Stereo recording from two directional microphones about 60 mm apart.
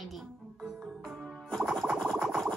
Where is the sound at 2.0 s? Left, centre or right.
Centre.